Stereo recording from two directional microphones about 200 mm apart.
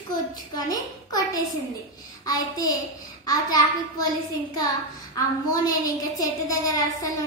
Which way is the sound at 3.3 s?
20° left (ahead or behind).